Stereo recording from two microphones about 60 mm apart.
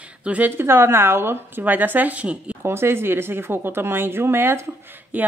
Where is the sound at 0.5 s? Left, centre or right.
Right.